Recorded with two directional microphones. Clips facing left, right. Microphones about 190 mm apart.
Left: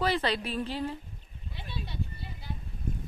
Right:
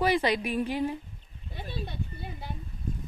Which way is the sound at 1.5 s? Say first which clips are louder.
Right 4 dB; 50° right (ahead or behind).